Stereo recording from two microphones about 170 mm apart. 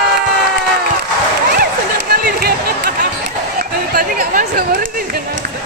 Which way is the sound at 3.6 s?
60° right (ahead or behind).